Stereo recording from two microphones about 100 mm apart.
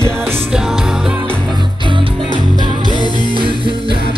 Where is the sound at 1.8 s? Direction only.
55° right (ahead or behind).